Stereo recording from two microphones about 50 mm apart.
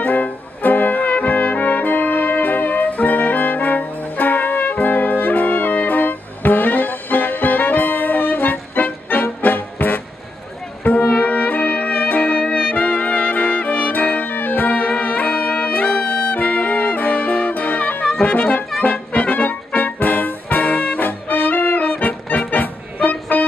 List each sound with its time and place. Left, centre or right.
0.0 s trumpet: left
10.8 s music: left
11.1 s trumpet: left
18.2 s music: left